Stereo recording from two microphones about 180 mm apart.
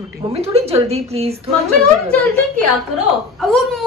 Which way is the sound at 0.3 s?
35° right (ahead or behind).